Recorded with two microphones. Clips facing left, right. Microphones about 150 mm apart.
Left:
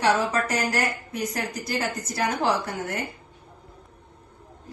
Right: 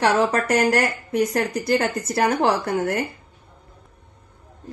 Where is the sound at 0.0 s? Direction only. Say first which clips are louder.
Right 3 dB; 65° right (ahead or behind).